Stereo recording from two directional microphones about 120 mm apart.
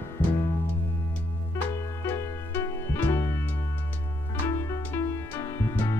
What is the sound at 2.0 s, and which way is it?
Music, 20° left (ahead or behind).